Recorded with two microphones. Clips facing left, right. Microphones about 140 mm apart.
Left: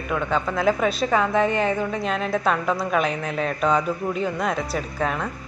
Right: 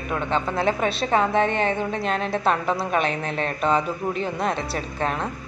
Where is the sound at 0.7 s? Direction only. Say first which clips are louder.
Left 5 dB; centre (ahead or behind).